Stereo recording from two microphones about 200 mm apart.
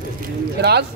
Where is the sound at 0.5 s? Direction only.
55° right (ahead or behind).